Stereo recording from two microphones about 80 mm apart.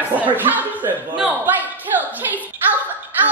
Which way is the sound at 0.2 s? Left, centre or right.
Right.